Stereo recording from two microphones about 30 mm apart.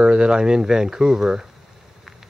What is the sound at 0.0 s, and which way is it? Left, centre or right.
Speech, right.